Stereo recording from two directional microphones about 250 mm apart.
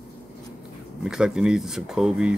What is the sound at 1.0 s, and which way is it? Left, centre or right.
Speech, centre.